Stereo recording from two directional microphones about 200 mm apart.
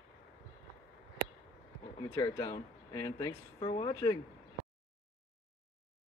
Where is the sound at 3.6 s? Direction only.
30° left (ahead or behind).